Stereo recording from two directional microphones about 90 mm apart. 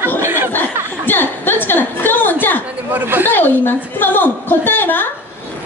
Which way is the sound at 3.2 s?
25° left (ahead or behind).